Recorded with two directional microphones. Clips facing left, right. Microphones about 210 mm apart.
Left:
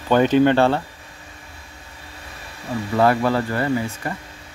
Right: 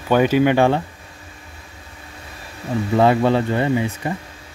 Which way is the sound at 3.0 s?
20° right (ahead or behind).